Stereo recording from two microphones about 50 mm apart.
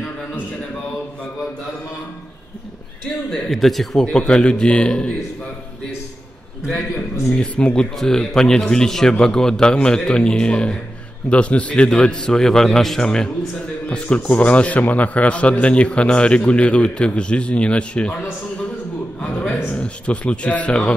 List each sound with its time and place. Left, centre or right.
3.5 s speech: centre
4.0 s a man's voice: centre
7.3 s a man's voice: centre
13.8 s a man's voice: left
19.6 s a man's voice: left